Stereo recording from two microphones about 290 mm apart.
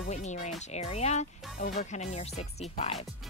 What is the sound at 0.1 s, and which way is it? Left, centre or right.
Speech, left.